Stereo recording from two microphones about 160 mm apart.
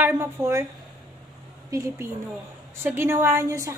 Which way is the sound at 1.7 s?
20° right (ahead or behind).